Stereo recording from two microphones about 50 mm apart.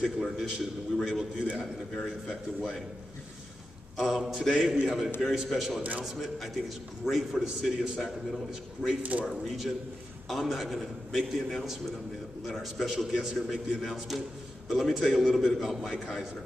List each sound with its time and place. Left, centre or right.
0.0 s a man's voice: centre
3.9 s a sound: centre
4.2 s a man's voice: centre
5.8 s a man's voice: right
6.1 s a man's voice: centre